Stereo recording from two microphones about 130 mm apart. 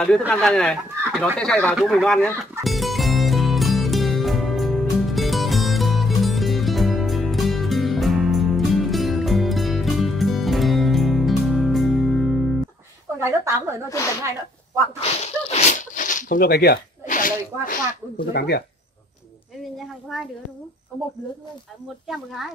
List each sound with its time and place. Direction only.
0.3 s speech: 5° left (ahead or behind)
2.6 s music: centre (ahead or behind)
13.2 s a woman's voice: 20° right (ahead or behind)
13.8 s speech: 25° left (ahead or behind)
15.0 s a sound: 55° left (ahead or behind); by 16.4 s 85° left
17.0 s snake: 90° left
20.1 s speech: centre (ahead or behind)
22.0 s speech: centre (ahead or behind)